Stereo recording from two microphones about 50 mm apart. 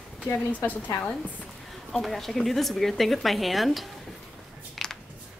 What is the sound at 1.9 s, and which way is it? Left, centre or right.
Speech, centre.